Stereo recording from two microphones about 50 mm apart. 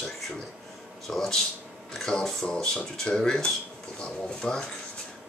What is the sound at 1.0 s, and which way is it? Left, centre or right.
Speech, centre.